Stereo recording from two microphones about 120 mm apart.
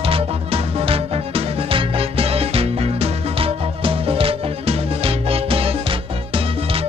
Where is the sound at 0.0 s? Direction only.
55° right (ahead or behind).